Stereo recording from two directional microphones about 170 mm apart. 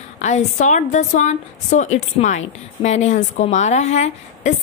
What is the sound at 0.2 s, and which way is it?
A woman's voice, 45° left (ahead or behind).